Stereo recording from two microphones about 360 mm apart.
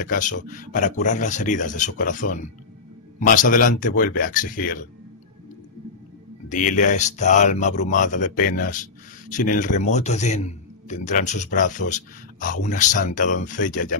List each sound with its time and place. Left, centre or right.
0.0 s a man's voice: left
6.5 s a man's voice: left